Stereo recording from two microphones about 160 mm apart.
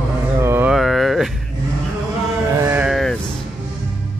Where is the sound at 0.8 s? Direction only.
Centre (ahead or behind).